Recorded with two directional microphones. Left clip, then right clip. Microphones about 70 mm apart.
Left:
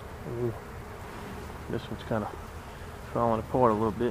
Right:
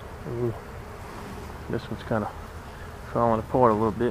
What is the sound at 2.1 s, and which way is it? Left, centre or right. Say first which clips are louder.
Speech: right 4 dB; right.